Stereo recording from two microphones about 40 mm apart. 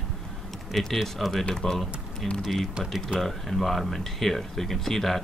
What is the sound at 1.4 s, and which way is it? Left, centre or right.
Speech, centre.